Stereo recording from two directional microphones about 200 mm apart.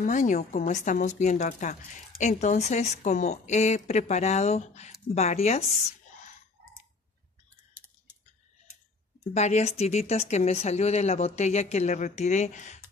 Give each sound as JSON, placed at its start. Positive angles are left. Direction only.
{"t": 0.0, "sound": "a woman's voice", "side_deg": 40}
{"t": 9.3, "sound": "a woman's voice", "side_deg": 35}